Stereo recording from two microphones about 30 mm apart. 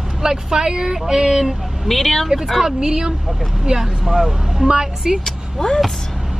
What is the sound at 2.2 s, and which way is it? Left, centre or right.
Speech, centre.